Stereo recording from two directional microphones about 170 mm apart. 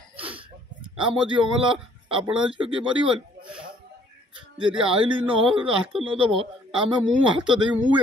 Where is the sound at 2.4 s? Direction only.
30° right (ahead or behind).